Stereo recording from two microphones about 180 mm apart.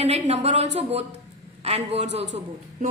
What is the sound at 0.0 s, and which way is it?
A woman's voice, 35° right (ahead or behind).